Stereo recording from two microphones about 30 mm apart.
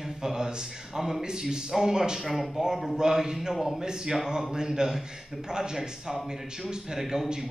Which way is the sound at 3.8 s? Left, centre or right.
Right.